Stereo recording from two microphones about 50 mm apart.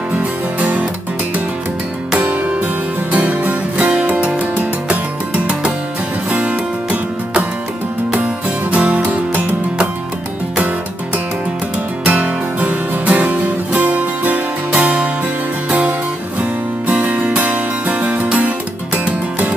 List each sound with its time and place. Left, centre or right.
3.1 s music: right
6.3 s music: right
8.7 s music: right
12.0 s music: right
17.4 s music: right